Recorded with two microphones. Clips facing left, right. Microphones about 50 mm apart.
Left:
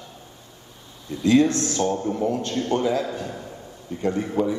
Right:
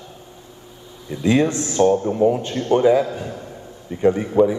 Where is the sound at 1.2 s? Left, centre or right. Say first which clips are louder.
Even; right.